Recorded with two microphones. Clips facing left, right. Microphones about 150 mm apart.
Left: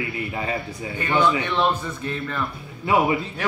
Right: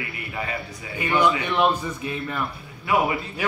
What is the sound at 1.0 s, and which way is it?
A man's voice, 10° right (ahead or behind).